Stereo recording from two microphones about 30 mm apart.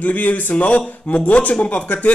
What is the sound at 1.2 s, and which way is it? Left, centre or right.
Speech, left.